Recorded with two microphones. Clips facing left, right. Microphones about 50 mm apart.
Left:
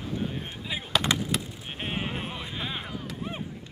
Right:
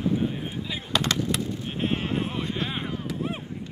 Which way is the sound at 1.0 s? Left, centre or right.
Centre.